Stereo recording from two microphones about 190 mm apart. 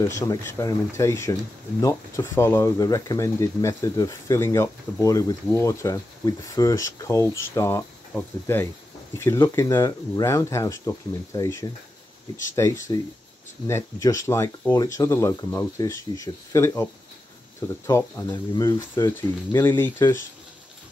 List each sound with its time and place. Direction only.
0.0 s speech: 15° left (ahead or behind)